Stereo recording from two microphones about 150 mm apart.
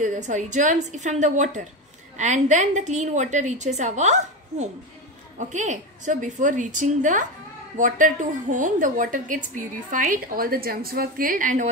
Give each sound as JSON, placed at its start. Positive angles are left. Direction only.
{"t": 0.0, "sound": "a woman's voice", "side_deg": -55}